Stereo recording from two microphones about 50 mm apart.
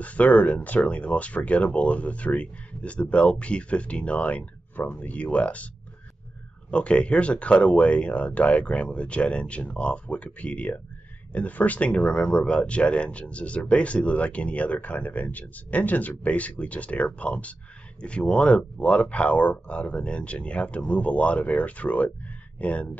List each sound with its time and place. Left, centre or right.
0.0 s speech: left
6.7 s speech: left